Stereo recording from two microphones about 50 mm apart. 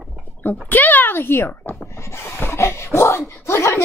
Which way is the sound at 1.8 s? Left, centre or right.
Left.